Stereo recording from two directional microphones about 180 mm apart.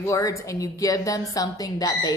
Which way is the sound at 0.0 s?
15° left (ahead or behind).